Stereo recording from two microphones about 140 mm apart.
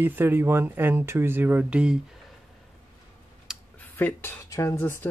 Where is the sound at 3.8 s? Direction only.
15° left (ahead or behind).